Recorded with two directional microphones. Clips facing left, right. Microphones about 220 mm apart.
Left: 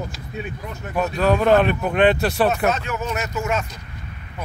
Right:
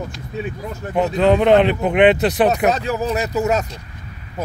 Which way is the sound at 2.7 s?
35° right (ahead or behind).